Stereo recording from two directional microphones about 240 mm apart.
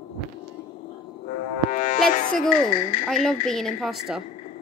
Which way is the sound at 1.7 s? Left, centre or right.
Left.